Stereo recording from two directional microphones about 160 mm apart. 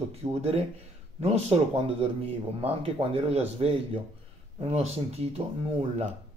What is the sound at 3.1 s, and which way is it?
Speech, 40° right (ahead or behind).